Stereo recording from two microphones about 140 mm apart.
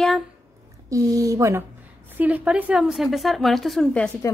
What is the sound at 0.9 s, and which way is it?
A woman's voice, 25° right (ahead or behind).